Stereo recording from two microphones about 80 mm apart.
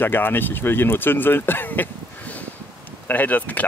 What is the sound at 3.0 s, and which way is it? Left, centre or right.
Speech, left.